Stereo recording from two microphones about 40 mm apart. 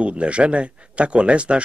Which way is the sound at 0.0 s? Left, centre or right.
Right.